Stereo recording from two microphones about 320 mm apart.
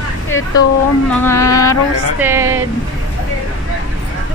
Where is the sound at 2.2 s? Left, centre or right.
Centre.